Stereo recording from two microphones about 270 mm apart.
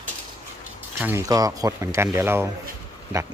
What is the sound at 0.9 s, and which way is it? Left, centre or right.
A man's voice, centre.